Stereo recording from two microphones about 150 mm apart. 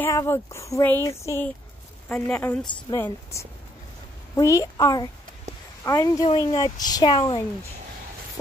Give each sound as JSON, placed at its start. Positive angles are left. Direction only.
{"t": 0.0, "sound": "speech", "side_deg": 20}
{"t": 2.0, "sound": "a woman's voice", "side_deg": 5}
{"t": 4.4, "sound": "speech", "side_deg": 20}